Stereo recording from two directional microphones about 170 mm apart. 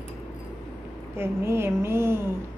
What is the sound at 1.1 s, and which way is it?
A woman's voice, 15° right (ahead or behind).